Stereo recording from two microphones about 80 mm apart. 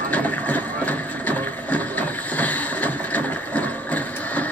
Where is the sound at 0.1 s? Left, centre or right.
Centre.